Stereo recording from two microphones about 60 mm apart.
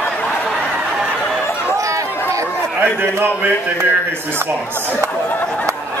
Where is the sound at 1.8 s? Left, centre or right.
Right.